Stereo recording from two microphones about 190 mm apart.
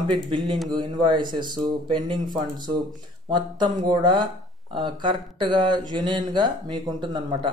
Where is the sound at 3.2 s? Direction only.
25° right (ahead or behind).